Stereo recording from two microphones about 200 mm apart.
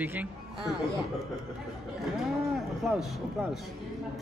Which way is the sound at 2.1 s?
Centre (ahead or behind).